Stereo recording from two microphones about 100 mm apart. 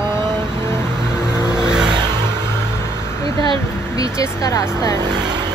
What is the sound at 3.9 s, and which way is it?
Speech, 35° left (ahead or behind).